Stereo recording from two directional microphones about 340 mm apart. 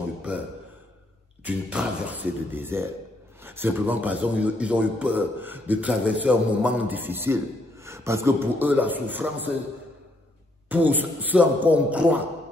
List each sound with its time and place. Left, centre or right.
0.3 s a sound: centre
1.4 s speech: centre
10.7 s speech: centre